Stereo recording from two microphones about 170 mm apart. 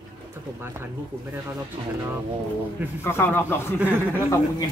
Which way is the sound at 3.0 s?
15° left (ahead or behind).